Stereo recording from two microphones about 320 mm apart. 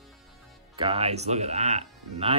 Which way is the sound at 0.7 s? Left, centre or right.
Centre.